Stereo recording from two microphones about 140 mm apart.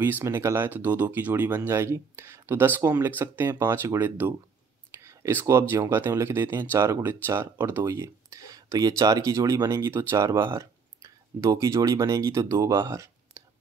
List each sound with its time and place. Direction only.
0.0 s speech: 15° right (ahead or behind)